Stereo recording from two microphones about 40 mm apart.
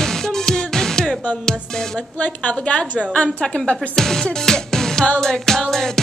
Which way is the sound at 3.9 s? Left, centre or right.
Centre.